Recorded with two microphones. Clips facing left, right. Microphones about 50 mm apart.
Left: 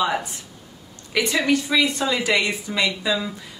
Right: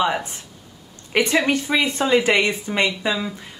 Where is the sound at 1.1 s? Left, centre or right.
Right.